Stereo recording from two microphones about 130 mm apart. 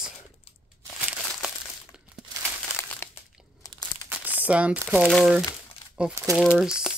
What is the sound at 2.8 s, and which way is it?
Crumpling, 20° left (ahead or behind).